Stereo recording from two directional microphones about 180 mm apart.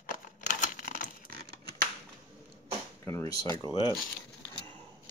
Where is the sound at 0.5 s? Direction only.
45° left (ahead or behind).